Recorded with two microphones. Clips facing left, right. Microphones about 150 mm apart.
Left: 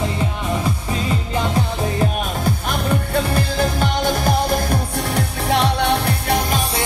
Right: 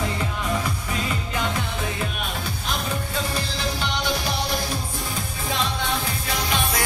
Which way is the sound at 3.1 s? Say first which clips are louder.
Left 8 dB; 55° left (ahead or behind).